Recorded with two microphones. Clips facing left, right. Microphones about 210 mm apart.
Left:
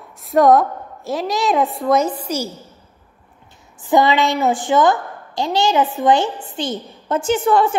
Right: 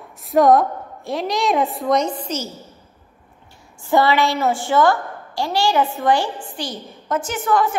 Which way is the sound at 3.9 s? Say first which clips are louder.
Left 2 dB; 20° left (ahead or behind).